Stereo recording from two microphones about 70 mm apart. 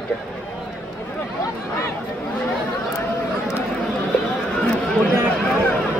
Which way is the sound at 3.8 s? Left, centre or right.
Centre.